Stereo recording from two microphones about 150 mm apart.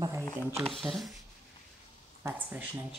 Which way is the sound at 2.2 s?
10° right (ahead or behind).